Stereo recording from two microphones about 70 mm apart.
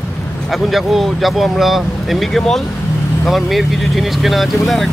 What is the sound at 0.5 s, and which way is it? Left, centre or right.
Speech, centre.